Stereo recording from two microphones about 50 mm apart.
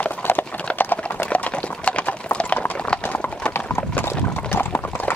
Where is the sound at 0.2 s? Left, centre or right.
Left.